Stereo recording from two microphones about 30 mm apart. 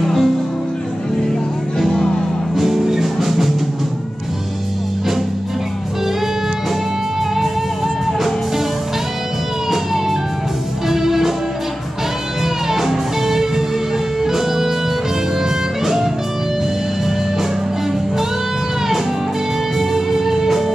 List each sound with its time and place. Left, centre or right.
0.0 s music: centre
1.8 s music: centre
2.5 s music: centre
9.7 s music: centre
12.6 s music: centre
19.8 s music: centre